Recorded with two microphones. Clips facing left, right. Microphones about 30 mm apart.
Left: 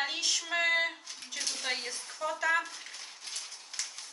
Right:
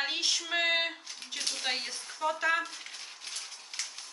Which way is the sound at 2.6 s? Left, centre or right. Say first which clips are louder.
Right 2 dB; right.